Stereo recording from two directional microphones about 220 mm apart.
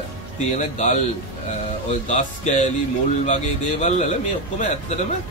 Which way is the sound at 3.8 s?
30° left (ahead or behind).